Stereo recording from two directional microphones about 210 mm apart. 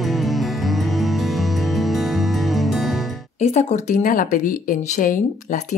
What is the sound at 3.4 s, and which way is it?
Speech, 30° left (ahead or behind).